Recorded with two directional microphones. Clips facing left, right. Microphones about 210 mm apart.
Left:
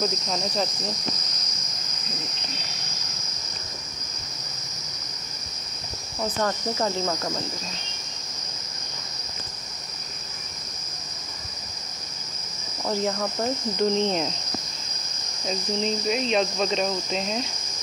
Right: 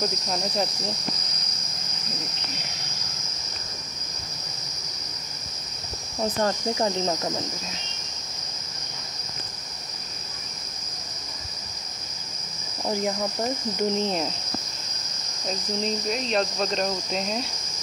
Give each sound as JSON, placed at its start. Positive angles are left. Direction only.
{"t": 0.0, "sound": "cricket", "side_deg": -5}
{"t": 6.2, "sound": "speech", "side_deg": -20}
{"t": 12.8, "sound": "cricket", "side_deg": -15}
{"t": 15.4, "sound": "cricket", "side_deg": 0}